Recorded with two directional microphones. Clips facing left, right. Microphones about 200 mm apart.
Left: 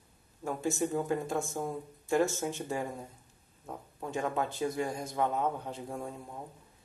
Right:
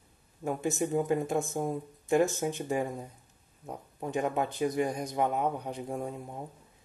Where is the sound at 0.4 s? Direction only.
20° right (ahead or behind).